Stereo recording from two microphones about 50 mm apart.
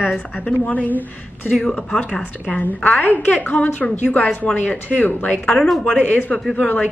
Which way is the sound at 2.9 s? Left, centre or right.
Left.